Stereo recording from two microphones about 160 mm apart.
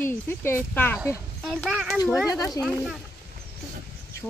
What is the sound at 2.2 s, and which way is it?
Speech, 20° left (ahead or behind).